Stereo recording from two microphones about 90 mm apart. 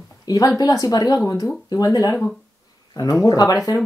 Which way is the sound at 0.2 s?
45° left (ahead or behind).